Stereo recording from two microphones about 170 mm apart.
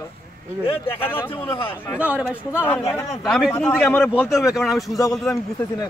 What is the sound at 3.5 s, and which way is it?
Speech, 10° left (ahead or behind).